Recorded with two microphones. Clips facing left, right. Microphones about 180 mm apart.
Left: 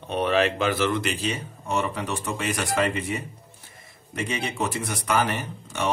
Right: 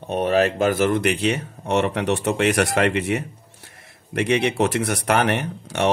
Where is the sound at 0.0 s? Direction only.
45° right (ahead or behind).